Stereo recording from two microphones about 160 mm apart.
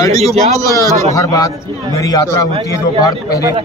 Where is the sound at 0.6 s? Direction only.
20° left (ahead or behind).